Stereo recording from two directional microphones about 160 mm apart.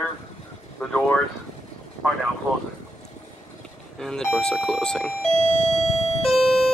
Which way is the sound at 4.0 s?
Centre (ahead or behind).